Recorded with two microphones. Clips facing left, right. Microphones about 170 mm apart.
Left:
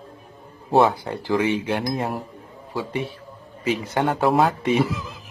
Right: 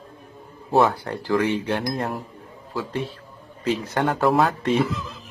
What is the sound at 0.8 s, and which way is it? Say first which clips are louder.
Speech: left 1 dB; 10° left (ahead or behind).